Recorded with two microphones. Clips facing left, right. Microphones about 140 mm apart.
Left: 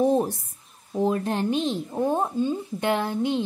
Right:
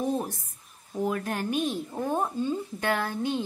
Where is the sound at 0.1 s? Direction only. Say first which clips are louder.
Left 7 dB; 35° left (ahead or behind).